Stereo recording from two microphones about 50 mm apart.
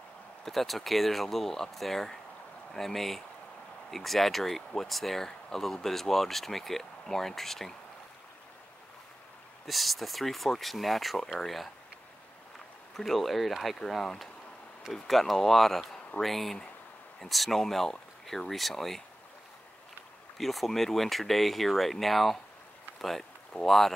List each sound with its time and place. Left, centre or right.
0.5 s speech: centre
9.7 s speech: centre
12.9 s speech: centre
20.3 s speech: centre
22.9 s a sound: centre
23.6 s speech: centre